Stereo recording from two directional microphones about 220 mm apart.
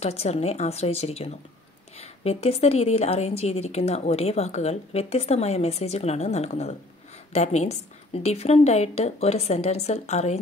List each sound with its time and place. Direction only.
0.0 s a woman's voice: 30° left (ahead or behind)